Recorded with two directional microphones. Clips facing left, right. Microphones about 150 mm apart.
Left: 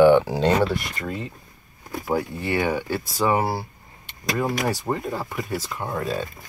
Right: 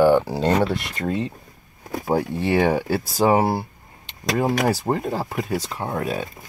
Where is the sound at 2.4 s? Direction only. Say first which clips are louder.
Right 5 dB; 35° right (ahead or behind).